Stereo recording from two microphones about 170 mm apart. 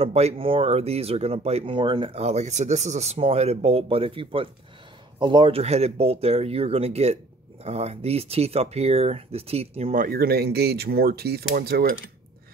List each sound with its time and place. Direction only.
0.0 s speech: 35° right (ahead or behind)
9.9 s speech: 60° right (ahead or behind)